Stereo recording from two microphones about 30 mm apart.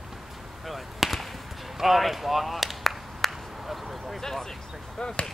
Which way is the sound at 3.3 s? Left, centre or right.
Centre.